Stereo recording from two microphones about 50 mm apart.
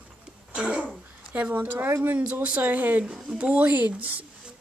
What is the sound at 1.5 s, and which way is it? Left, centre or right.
A woman's voice, right.